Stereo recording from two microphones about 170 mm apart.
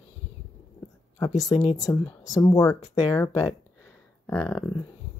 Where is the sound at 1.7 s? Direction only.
20° left (ahead or behind).